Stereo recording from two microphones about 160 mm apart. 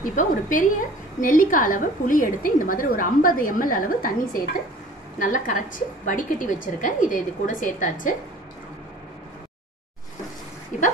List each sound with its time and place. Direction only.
0.0 s a woman's voice: 55° left (ahead or behind)